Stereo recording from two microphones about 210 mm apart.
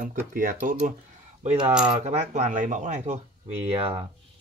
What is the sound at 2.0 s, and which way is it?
Speech, 30° right (ahead or behind).